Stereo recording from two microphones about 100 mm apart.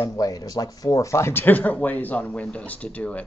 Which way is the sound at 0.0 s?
35° left (ahead or behind).